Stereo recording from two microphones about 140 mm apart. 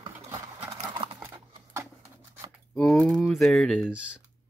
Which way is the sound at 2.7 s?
5° left (ahead or behind).